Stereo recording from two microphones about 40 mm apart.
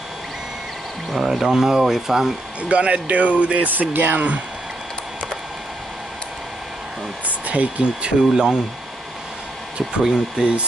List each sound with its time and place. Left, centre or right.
1.1 s speech: centre
2.7 s speech: right
3.9 s speech: right
7.2 s speech: right
8.0 s speech: centre
10.0 s speech: right